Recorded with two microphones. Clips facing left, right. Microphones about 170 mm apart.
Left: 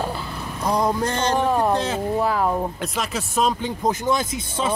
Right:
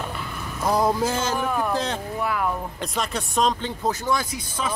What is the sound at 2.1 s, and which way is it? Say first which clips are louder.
Speech: left 5 dB; 35° left (ahead or behind).